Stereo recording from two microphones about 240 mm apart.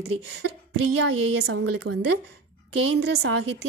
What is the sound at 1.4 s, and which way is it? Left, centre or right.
Speech, right.